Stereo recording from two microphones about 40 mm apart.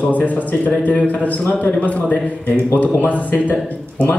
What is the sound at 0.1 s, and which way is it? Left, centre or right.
A man's voice, left.